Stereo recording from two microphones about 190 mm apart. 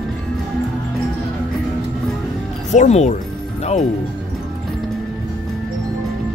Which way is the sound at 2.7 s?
40° left (ahead or behind).